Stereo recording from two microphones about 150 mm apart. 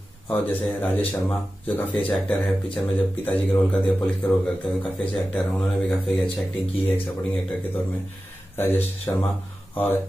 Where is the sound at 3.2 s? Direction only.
10° left (ahead or behind).